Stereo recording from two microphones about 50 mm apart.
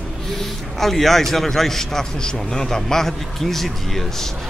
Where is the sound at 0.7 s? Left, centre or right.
Centre.